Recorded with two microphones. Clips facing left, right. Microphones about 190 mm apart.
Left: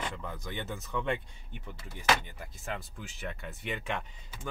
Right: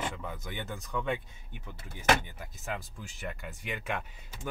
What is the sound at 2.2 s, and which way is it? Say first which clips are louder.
Speech: right 1 dB; 5° right (ahead or behind).